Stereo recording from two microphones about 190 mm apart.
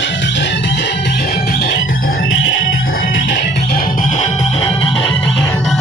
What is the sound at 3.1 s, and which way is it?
Music, 70° left (ahead or behind).